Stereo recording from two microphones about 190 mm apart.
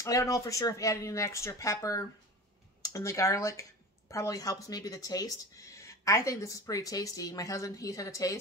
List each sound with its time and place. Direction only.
0.0 s speech: 15° left (ahead or behind)